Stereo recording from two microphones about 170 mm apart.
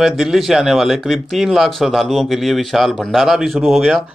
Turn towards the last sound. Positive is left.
turn(degrees=0)  # may be behind; listen again after turning